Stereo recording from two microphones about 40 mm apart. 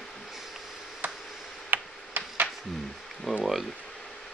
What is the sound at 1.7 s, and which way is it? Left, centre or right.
Tick-tock, right.